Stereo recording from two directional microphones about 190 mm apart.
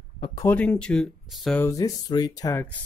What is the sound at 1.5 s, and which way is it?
Speech, 15° left (ahead or behind).